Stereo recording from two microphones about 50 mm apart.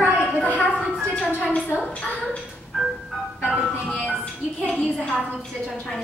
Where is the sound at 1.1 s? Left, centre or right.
Left.